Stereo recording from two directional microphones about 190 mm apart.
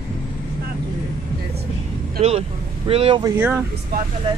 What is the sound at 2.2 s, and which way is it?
Speech, 30° right (ahead or behind).